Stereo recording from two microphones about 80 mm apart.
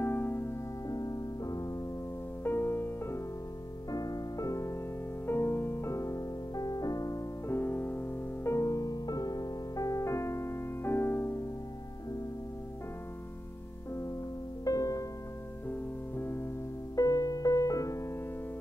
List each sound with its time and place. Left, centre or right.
0.0 s music: left
0.8 s music: left
2.4 s music: left
3.9 s music: left
5.2 s music: left
7.4 s music: left
14.6 s music: left
15.7 s music: left
16.9 s music: left